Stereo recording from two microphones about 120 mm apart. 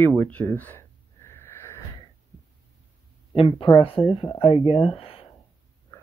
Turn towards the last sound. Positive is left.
turn(degrees=50)  # may be behind; listen again after turning